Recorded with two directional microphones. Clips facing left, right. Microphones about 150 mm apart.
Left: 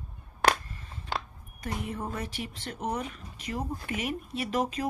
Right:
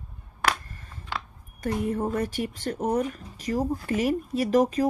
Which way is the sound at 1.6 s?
45° right (ahead or behind).